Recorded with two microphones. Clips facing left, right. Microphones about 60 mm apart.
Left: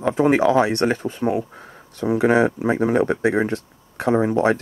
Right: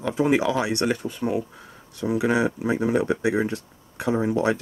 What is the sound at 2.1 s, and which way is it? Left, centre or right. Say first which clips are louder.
Speech: left 5 dB; left.